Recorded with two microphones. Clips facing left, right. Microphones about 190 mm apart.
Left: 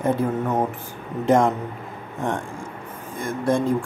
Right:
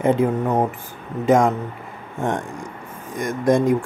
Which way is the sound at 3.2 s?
15° right (ahead or behind).